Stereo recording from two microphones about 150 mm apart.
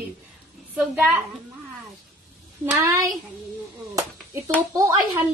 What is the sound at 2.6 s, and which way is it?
Speech, 15° right (ahead or behind).